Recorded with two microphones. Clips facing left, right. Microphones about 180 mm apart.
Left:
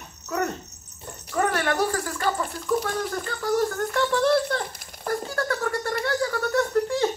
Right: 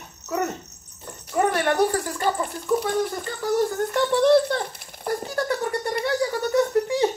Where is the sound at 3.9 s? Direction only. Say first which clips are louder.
Right 5 dB; 20° right (ahead or behind).